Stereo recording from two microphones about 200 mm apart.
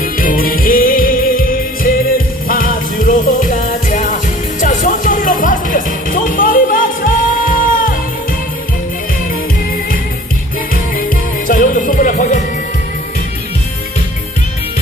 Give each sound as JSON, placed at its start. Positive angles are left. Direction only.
{"t": 0.0, "sound": "music", "side_deg": 45}
{"t": 10.7, "sound": "music", "side_deg": 45}